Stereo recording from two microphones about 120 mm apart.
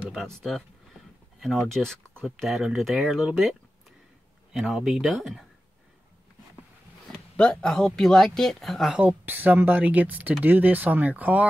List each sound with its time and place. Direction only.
0.1 s speech: centre (ahead or behind)
7.1 s speech: 5° left (ahead or behind)
9.0 s speech: 15° right (ahead or behind)